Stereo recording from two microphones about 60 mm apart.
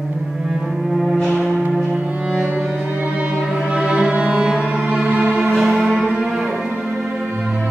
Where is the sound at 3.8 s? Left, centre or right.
Centre.